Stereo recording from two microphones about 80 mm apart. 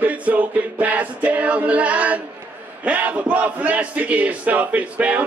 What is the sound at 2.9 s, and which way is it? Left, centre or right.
Speech, centre.